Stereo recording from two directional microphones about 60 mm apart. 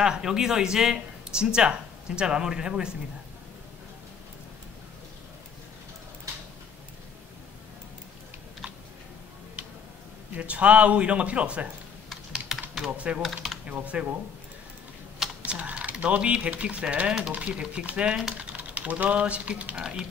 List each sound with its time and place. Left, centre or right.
0.0 s speech: centre
10.3 s a man's voice: right
12.1 s computer keyboard: centre
12.9 s a man's voice: right
13.2 s speech: centre
13.8 s a man's voice: right
15.4 s a man's voice: right
19.7 s speech: centre